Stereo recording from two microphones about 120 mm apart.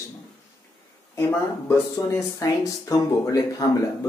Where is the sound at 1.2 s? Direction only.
20° left (ahead or behind).